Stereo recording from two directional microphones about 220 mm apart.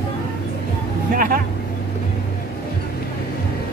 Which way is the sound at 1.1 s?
40° right (ahead or behind).